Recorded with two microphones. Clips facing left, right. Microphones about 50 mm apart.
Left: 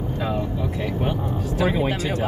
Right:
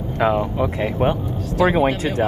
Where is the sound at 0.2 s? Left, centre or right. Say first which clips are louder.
Right 9 dB; right.